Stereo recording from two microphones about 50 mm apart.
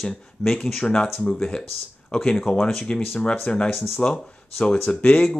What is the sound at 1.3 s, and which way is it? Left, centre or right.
Speech, centre.